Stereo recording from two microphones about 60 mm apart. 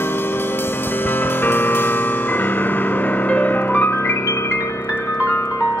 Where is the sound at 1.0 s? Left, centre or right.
Left.